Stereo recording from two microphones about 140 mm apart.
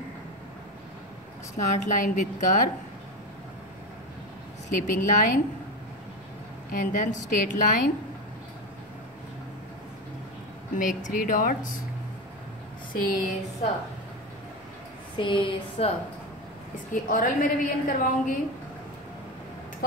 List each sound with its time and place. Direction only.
1.7 s a woman's voice: 65° left (ahead or behind)
4.6 s a woman's voice: 75° left (ahead or behind)
6.7 s a woman's voice: 70° left (ahead or behind)
10.7 s speech: 65° left (ahead or behind)
12.9 s a sound: 85° left
15.1 s a sound: 35° left (ahead or behind)
16.9 s a woman's voice: 75° left (ahead or behind)